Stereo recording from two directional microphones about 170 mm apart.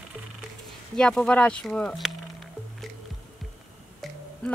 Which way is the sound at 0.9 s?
5° left (ahead or behind).